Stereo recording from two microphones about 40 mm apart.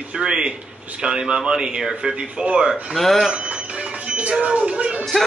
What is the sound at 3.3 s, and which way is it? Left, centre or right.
Speech, right.